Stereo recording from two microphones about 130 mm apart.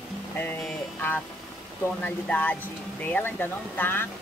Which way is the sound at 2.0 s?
10° left (ahead or behind).